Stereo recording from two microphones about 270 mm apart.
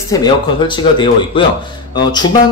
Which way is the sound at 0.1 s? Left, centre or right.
Centre.